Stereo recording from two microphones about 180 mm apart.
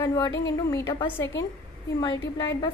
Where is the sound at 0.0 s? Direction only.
20° left (ahead or behind).